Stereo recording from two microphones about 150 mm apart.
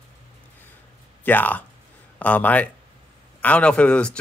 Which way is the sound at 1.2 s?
10° left (ahead or behind).